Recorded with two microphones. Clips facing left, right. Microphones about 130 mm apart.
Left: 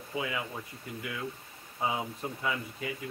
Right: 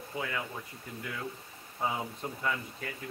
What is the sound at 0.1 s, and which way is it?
Speech, 10° left (ahead or behind).